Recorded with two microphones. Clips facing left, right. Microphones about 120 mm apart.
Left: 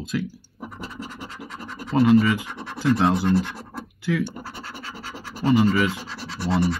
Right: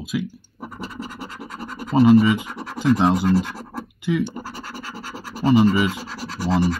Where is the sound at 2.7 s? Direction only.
15° right (ahead or behind).